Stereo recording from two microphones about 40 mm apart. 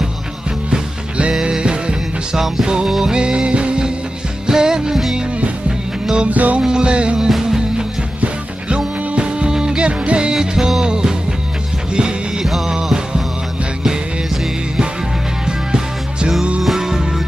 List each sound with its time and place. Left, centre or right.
0.7 s music: right
2.3 s music: centre
2.6 s music: centre
4.5 s music: centre
6.2 s music: right
6.6 s music: right
7.2 s music: centre
8.2 s music: right
10.3 s music: centre
15.4 s music: centre